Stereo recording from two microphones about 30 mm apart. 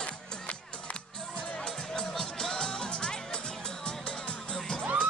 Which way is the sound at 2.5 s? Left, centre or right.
Left.